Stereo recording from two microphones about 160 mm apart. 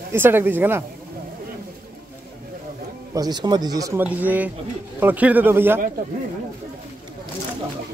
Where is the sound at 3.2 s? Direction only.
25° right (ahead or behind).